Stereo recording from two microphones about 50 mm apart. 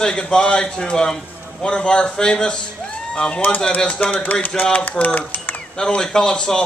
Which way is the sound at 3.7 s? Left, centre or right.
Left.